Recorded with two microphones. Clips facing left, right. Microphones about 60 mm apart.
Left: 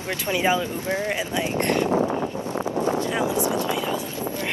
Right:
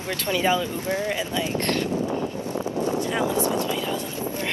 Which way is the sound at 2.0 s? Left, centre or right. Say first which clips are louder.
Left 2 dB; centre.